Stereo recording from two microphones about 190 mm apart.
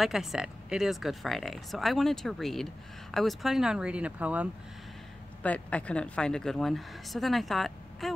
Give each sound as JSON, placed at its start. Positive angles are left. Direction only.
{"t": 0.0, "sound": "speech", "side_deg": 0}
{"t": 5.4, "sound": "speech", "side_deg": 5}